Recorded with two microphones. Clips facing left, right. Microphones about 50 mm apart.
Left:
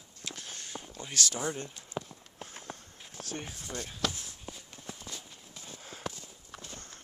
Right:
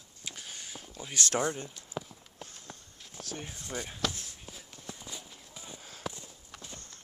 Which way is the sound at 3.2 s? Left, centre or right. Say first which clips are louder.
Even; left.